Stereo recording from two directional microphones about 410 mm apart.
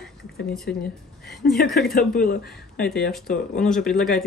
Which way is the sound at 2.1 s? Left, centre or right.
Left.